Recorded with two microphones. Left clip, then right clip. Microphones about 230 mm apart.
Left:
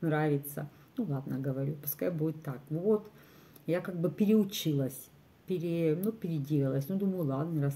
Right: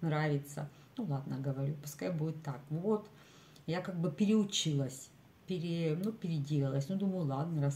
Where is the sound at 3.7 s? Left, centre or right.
Centre.